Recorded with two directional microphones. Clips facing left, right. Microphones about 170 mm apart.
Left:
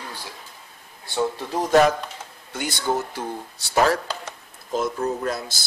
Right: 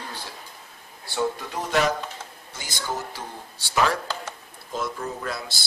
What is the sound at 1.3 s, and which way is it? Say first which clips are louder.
Speech: left 7 dB; 35° left (ahead or behind).